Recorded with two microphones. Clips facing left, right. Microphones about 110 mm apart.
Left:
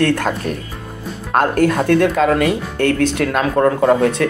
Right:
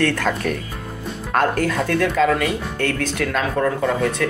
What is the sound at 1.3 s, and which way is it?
Speech, 50° left (ahead or behind).